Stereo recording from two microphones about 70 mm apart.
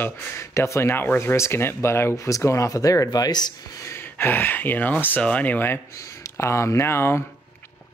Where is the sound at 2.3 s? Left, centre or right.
Left.